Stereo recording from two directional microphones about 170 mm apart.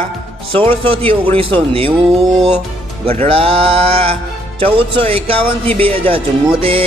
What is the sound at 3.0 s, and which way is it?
Speech, 35° right (ahead or behind).